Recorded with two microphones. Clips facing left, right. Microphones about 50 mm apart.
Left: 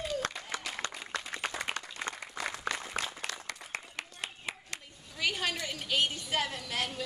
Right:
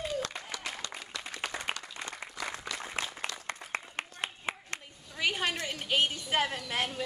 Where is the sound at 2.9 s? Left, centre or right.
Right.